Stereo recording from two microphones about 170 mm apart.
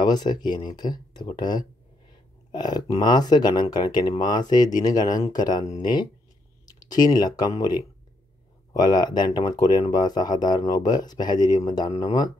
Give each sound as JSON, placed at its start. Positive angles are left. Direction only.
{"t": 0.0, "sound": "speech", "side_deg": 25}